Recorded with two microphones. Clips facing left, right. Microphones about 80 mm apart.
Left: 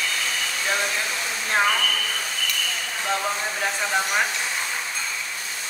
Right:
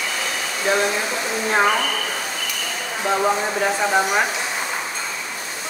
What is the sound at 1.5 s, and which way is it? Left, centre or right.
Speech, centre.